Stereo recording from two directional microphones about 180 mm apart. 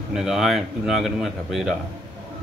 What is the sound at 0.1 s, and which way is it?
A man's voice, centre (ahead or behind).